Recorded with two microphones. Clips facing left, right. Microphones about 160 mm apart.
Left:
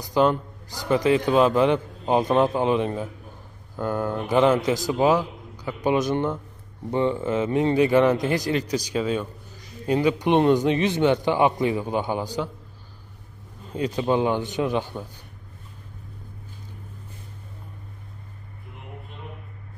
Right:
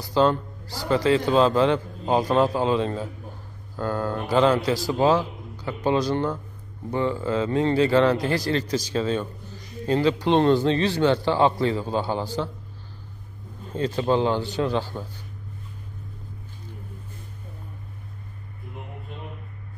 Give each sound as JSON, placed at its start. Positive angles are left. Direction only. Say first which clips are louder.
{"t": 0.0, "sound": "a man's voice", "louder": "even", "side_deg": 15}
{"t": 13.7, "sound": "a man's voice", "louder": "even", "side_deg": 15}